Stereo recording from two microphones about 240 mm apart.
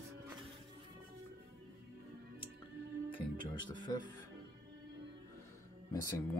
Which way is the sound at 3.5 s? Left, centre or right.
Centre.